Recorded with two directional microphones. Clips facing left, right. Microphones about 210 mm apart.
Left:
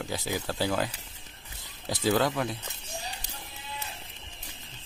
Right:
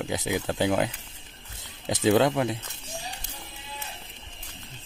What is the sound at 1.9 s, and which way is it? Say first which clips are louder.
Speech: right 5 dB; 20° right (ahead or behind).